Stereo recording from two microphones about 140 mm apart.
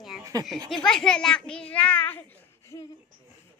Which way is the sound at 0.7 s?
5° left (ahead or behind).